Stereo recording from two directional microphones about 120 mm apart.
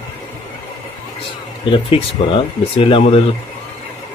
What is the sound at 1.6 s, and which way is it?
Speech, 45° left (ahead or behind).